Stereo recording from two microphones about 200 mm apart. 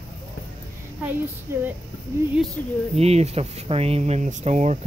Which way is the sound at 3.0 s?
30° right (ahead or behind).